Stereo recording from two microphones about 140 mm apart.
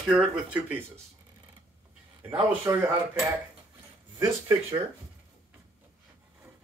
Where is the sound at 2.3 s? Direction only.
10° right (ahead or behind).